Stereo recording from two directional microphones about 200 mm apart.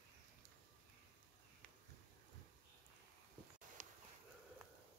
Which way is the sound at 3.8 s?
40° right (ahead or behind).